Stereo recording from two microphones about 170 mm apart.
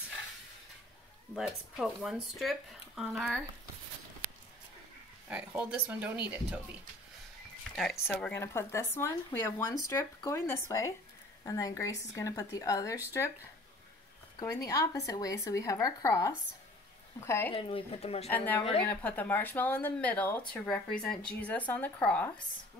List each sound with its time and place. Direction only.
1.3 s speech: 5° right (ahead or behind)
5.3 s speech: 5° right (ahead or behind)
7.9 s speech: 15° left (ahead or behind)
17.5 s speech: 35° left (ahead or behind)
18.3 s speech: 10° left (ahead or behind)